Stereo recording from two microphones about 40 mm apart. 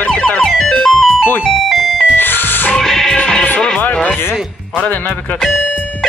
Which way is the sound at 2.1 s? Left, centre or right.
Left.